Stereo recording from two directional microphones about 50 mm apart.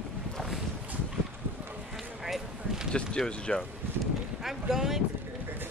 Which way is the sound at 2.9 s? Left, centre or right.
Centre.